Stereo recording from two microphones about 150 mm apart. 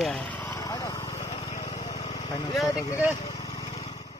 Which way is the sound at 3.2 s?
45° left (ahead or behind).